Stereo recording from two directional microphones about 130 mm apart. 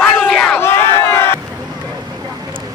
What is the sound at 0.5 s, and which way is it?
Crowd, 20° left (ahead or behind).